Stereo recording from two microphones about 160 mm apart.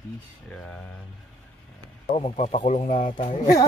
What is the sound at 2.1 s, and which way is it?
Speech, 40° left (ahead or behind).